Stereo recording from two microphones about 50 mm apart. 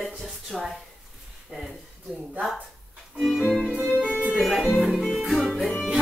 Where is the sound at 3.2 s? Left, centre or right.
Centre.